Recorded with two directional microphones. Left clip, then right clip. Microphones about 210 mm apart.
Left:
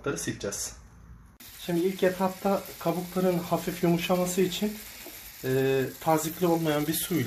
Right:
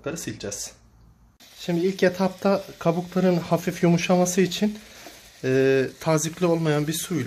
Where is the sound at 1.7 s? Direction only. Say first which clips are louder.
Right 4 dB; 65° right (ahead or behind); by 7.2 s 40° right (ahead or behind).